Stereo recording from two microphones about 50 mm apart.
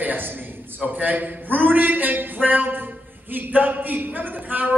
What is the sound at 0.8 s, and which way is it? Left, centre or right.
A man's voice, right.